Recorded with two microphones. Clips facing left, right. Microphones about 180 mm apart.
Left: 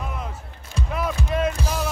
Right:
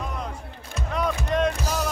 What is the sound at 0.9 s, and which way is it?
Music, 5° left (ahead or behind).